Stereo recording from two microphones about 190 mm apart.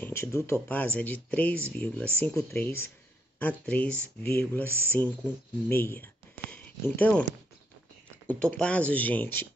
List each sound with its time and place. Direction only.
0.0 s speech: 15° left (ahead or behind)
8.3 s speech: 5° left (ahead or behind)